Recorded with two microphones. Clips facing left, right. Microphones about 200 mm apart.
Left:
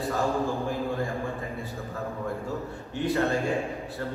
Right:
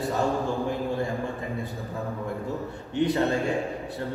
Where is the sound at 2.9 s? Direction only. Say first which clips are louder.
Right 4 dB; 20° right (ahead or behind).